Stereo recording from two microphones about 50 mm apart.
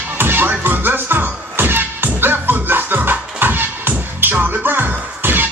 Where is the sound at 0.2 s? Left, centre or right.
Right.